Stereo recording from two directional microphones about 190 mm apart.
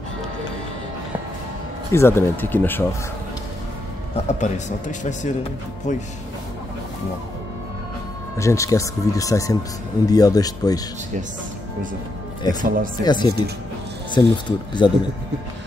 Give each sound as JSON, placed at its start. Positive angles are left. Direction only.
{"t": 1.9, "sound": "speech", "side_deg": 15}
{"t": 4.3, "sound": "a man's voice", "side_deg": 40}
{"t": 8.4, "sound": "speech", "side_deg": 15}
{"t": 12.6, "sound": "speech", "side_deg": -45}
{"t": 13.0, "sound": "speech", "side_deg": 25}